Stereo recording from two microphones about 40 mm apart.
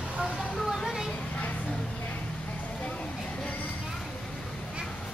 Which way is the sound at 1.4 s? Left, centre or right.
Left.